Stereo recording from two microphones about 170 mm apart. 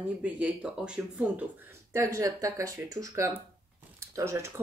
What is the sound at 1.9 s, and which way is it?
Speech, 15° right (ahead or behind).